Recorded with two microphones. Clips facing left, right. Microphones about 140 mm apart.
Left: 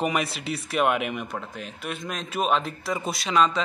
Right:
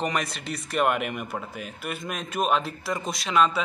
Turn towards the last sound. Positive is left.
turn(degrees=-5)  # may be behind; listen again after turning